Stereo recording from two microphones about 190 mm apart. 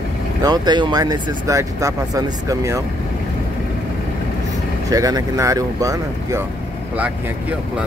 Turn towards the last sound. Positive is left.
turn(degrees=-20)  # may be behind; listen again after turning